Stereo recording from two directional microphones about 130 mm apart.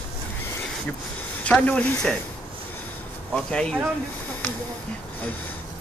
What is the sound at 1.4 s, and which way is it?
Speech, 10° left (ahead or behind).